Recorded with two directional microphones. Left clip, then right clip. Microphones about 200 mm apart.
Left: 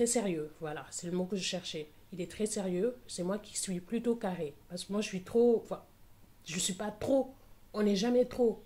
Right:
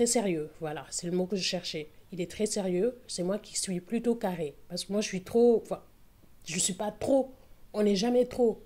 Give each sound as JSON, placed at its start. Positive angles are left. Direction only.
{"t": 0.0, "sound": "speech", "side_deg": -25}